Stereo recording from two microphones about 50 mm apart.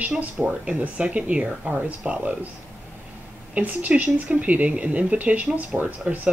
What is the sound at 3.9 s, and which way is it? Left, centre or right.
Speech, centre.